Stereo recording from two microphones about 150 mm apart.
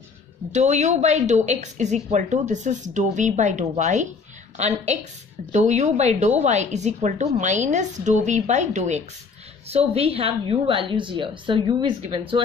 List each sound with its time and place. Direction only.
0.5 s a woman's voice: 50° right (ahead or behind); by 12.4 s 35° right (ahead or behind)